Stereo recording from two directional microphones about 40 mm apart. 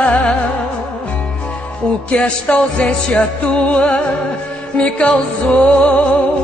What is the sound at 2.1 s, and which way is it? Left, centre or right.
Music, left.